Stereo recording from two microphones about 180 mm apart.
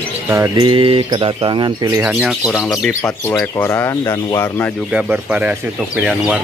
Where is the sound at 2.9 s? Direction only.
15° left (ahead or behind).